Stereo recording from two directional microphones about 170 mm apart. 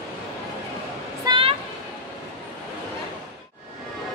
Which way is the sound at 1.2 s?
30° right (ahead or behind).